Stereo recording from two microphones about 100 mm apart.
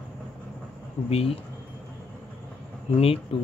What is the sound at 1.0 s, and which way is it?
Speech, 85° left.